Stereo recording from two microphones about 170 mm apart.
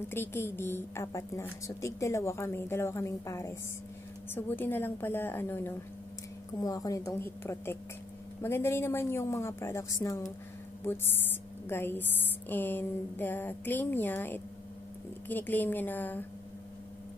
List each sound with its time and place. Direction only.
0.1 s a woman's voice: 15° left (ahead or behind)
11.7 s a woman's voice: 10° left (ahead or behind)